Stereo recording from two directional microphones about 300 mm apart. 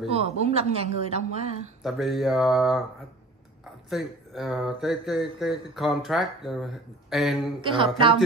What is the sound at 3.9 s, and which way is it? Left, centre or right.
Speech, centre.